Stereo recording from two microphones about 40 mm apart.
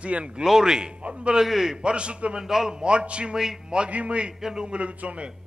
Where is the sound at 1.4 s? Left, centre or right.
Centre.